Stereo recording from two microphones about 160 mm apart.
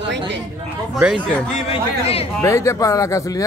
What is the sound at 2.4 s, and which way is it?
Speech, 20° left (ahead or behind).